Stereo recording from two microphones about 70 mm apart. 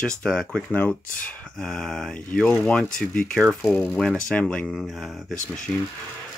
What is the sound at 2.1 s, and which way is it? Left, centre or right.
Speech, centre.